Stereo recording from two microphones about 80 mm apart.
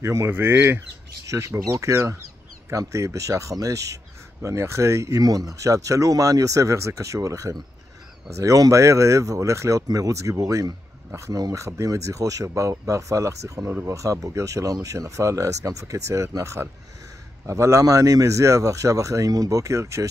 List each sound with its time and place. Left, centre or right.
0.0 s speech: right
0.3 s speech: right
1.2 s speech: right